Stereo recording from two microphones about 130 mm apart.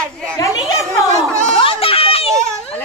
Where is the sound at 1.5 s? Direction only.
45° left (ahead or behind).